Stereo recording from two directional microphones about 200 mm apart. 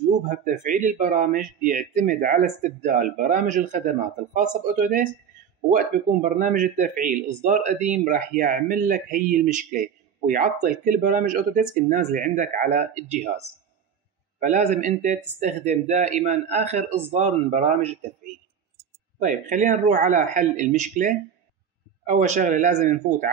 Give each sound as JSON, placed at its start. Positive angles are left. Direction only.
{"t": 0.3, "sound": "speech", "side_deg": -40}
{"t": 6.2, "sound": "speech", "side_deg": -40}
{"t": 19.1, "sound": "speech", "side_deg": -40}